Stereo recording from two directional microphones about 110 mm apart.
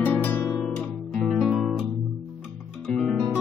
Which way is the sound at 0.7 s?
5° left (ahead or behind).